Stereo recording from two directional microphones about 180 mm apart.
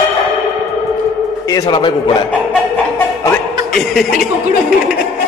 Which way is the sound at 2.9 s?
10° left (ahead or behind).